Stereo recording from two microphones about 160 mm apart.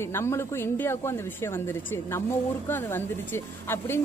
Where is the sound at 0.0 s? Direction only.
15° left (ahead or behind).